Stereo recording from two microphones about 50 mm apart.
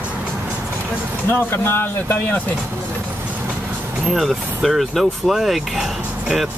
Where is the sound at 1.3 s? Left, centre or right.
Left.